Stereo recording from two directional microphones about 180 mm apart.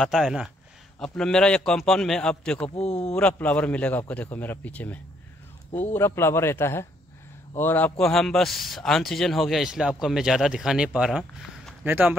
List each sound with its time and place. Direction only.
0.0 s speech: centre (ahead or behind)
2.8 s speech: 35° left (ahead or behind)
3.2 s speech: 10° left (ahead or behind); by 12.2 s 10° right (ahead or behind)